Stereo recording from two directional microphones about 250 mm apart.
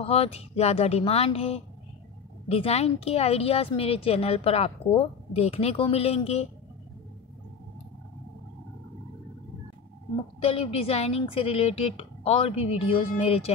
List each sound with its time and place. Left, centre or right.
0.0 s speech: left
10.4 s speech: left